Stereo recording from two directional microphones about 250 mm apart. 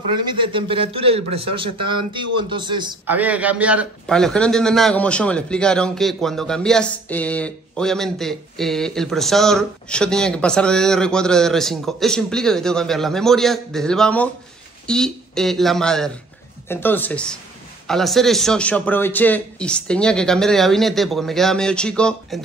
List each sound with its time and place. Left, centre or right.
0.3 s a man's voice: centre
3.1 s a man's voice: centre